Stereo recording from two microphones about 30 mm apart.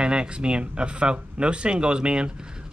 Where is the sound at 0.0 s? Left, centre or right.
Right.